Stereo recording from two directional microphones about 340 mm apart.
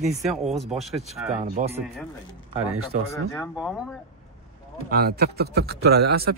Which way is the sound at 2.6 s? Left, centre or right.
Right.